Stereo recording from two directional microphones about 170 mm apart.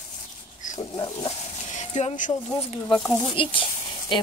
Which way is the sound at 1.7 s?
45° left (ahead or behind).